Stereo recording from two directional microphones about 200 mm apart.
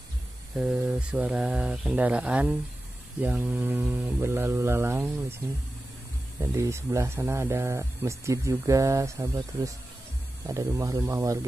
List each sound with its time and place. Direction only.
0.6 s speech: 5° right (ahead or behind)
6.4 s speech: 15° right (ahead or behind)